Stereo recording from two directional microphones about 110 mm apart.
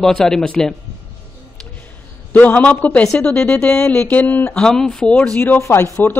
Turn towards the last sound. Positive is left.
turn(degrees=20)  # may be behind; listen again after turning